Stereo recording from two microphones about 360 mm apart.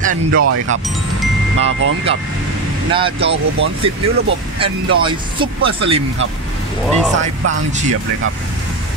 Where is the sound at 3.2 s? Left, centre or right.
Right.